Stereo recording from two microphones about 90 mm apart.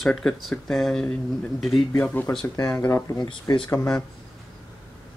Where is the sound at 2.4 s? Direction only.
35° left (ahead or behind).